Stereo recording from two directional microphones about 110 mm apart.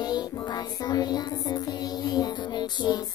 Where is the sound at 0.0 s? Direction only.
40° left (ahead or behind).